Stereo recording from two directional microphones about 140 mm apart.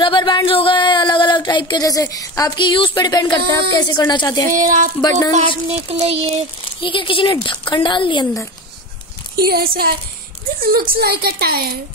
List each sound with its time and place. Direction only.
0.0 s a sound: 35° left (ahead or behind)
4.5 s speech: 70° right (ahead or behind)
5.4 s child singing: 40° right (ahead or behind)
6.8 s a woman's voice: 40° left (ahead or behind)
9.4 s a woman's voice: 90° right